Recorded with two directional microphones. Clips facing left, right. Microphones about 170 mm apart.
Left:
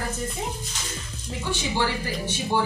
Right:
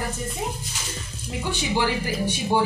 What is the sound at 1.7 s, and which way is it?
Speech, 15° right (ahead or behind).